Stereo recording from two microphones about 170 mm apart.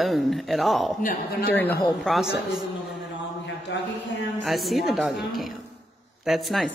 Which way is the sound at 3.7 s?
90° left.